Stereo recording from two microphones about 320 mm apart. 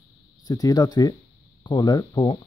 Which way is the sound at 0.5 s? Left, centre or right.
Centre.